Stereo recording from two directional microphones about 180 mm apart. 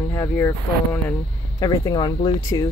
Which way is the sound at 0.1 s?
15° left (ahead or behind).